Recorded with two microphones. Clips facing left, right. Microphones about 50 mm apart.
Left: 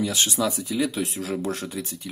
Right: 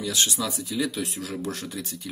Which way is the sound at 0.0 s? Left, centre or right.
Left.